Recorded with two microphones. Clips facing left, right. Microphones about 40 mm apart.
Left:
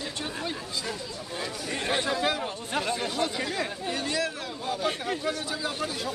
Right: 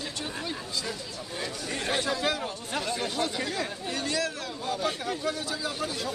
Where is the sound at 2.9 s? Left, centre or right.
Centre.